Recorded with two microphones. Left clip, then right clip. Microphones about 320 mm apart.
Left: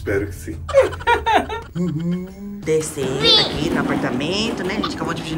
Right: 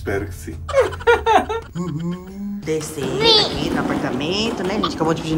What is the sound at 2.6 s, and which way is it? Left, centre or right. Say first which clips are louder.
Speech: left 4 dB; centre.